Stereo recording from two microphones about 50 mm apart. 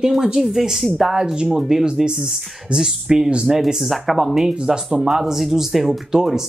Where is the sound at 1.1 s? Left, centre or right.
Centre.